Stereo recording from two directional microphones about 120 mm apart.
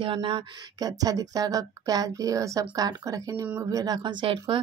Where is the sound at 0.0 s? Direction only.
45° right (ahead or behind).